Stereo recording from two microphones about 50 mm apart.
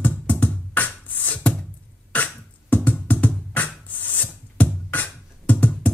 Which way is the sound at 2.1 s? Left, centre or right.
Left.